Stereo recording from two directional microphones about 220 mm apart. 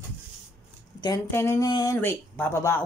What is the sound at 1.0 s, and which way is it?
Speech, 15° left (ahead or behind).